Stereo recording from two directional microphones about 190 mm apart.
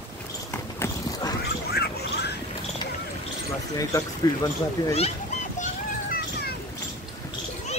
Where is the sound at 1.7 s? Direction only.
60° left (ahead or behind).